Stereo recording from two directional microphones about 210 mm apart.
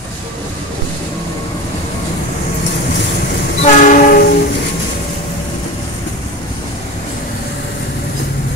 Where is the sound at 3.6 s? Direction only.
40° left (ahead or behind).